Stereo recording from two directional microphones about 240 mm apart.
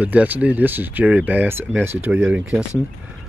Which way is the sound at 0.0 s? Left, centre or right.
Centre.